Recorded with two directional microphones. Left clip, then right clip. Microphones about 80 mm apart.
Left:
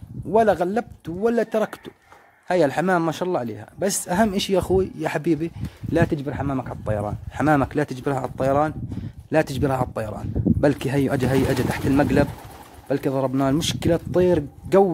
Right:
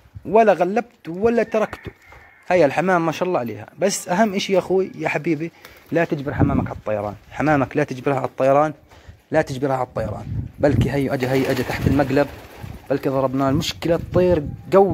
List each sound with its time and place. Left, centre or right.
0.3 s speech: centre; by 6.6 s left
6.6 s speech: left; by 8.7 s centre
9.3 s speech: left